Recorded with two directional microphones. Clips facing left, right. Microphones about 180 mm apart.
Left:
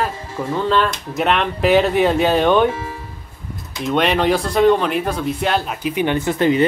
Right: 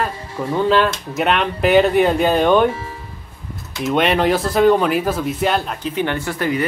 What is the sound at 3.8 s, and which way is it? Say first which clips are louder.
Speech: even; centre (ahead or behind).